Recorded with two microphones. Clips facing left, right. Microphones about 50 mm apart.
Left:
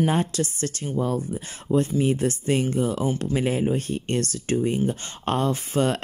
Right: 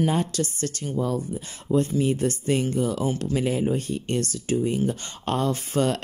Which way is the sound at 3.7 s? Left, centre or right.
Left.